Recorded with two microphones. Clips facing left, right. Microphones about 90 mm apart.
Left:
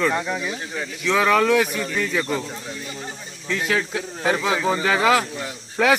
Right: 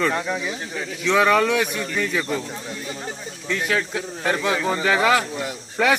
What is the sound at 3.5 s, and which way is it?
A man's voice, centre (ahead or behind).